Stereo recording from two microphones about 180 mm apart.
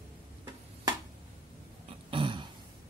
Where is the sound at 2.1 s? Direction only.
25° right (ahead or behind).